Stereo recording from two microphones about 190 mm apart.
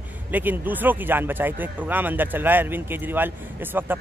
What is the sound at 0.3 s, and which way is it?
Speech, 10° right (ahead or behind).